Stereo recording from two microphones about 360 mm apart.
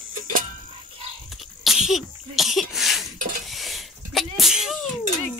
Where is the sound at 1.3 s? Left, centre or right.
Centre.